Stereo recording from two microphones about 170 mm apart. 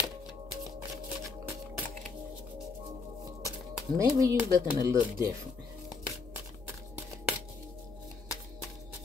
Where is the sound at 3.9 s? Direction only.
20° right (ahead or behind).